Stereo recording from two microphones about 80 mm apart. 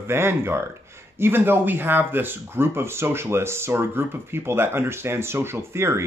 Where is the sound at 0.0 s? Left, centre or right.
Right.